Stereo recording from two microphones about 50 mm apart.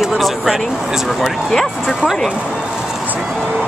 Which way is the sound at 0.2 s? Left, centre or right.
Centre.